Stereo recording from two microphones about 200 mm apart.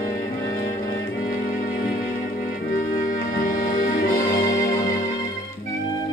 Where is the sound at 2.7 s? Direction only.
45° left (ahead or behind).